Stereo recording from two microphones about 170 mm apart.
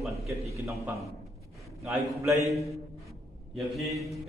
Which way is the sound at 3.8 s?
Centre (ahead or behind).